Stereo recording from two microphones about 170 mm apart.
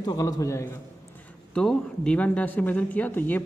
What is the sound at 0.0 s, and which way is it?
Speech, 25° left (ahead or behind).